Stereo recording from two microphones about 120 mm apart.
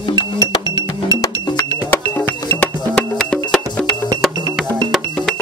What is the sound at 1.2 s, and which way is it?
Music, 25° left (ahead or behind).